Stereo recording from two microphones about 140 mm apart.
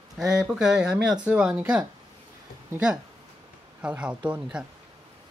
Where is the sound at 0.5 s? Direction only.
5° right (ahead or behind).